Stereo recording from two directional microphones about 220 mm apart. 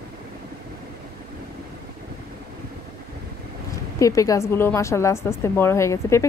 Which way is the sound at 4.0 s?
15° left (ahead or behind).